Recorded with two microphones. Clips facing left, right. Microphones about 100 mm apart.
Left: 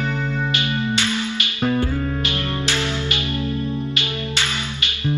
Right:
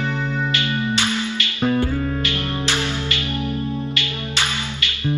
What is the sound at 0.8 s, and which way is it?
Music, 20° right (ahead or behind).